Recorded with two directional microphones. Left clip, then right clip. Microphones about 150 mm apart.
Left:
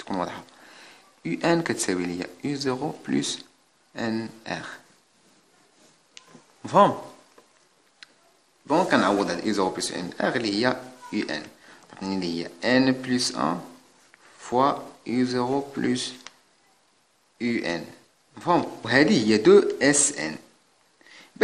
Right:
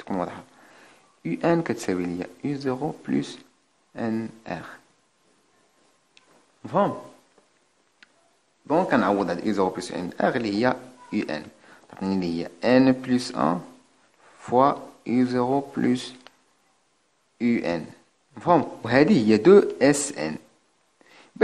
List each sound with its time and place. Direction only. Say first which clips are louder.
0.0 s speech: even; 15° right (ahead or behind)
6.6 s speech: left 5 dB; centre (ahead or behind)
8.0 s a sound: left 5 dB; 20° right (ahead or behind)
8.6 s speech: even; 20° right (ahead or behind)
17.4 s speech: right 2 dB; 30° right (ahead or behind)